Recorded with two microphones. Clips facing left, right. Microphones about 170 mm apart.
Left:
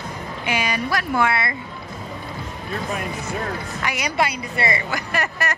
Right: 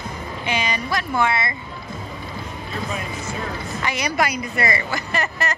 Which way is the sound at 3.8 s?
15° left (ahead or behind).